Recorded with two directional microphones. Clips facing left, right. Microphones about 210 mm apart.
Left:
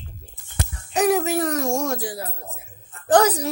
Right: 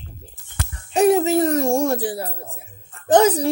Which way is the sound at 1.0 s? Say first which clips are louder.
Right 4 dB; 25° right (ahead or behind).